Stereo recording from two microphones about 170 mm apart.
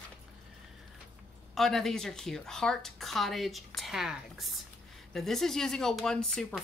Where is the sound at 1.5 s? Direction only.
Centre (ahead or behind).